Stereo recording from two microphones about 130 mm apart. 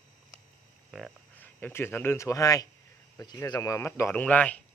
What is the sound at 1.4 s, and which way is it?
Speech, 15° left (ahead or behind).